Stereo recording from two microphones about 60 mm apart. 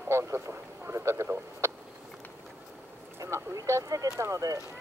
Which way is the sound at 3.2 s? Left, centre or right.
Right.